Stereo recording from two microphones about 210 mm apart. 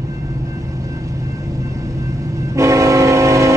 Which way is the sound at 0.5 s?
15° right (ahead or behind).